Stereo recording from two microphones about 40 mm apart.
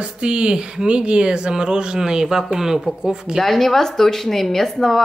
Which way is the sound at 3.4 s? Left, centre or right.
Centre.